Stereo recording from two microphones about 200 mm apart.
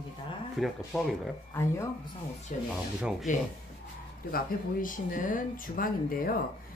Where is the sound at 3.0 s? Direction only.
5° right (ahead or behind).